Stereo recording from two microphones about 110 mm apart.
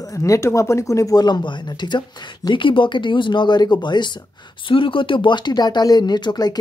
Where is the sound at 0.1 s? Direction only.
30° left (ahead or behind).